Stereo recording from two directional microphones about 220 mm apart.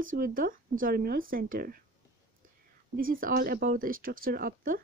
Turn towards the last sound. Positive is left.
turn(degrees=-40)  # may be behind; listen again after turning